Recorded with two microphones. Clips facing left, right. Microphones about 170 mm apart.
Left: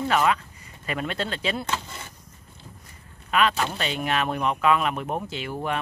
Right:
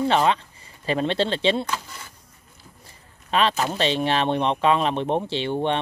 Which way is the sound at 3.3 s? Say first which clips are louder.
Right 1 dB; 30° right (ahead or behind).